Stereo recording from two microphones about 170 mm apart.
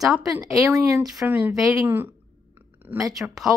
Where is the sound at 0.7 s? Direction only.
15° right (ahead or behind).